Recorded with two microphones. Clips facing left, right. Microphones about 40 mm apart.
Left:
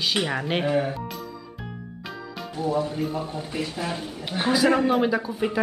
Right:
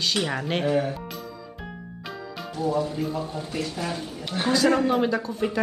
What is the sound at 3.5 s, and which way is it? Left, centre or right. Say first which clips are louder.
Speech: even; centre.